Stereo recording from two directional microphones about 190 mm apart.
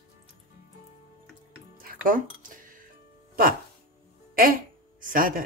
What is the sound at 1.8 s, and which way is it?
Music, 45° right (ahead or behind).